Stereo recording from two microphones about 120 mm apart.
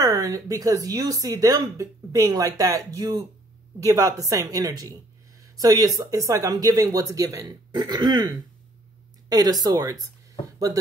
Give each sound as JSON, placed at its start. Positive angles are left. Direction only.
{"t": 0.0, "sound": "speech", "side_deg": -30}